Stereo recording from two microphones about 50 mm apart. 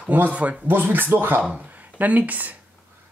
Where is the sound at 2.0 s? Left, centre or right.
Right.